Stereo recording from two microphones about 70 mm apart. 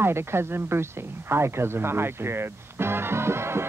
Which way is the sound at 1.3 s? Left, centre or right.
Right.